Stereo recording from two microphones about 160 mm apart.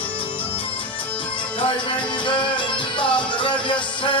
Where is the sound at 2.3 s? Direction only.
30° left (ahead or behind).